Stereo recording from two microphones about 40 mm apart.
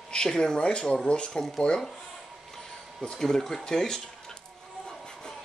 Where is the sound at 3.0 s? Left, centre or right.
Centre.